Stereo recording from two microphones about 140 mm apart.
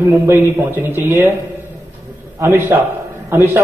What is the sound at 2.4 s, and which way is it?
A man's voice, 20° right (ahead or behind).